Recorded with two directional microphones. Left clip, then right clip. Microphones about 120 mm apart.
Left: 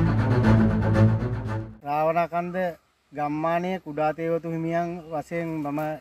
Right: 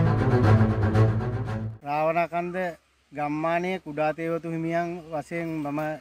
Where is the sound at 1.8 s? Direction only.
20° left (ahead or behind).